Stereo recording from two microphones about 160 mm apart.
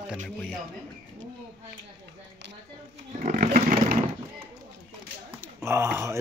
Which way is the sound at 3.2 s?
55° right (ahead or behind).